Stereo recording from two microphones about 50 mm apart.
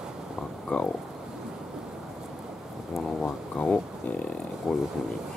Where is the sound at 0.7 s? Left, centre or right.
Left.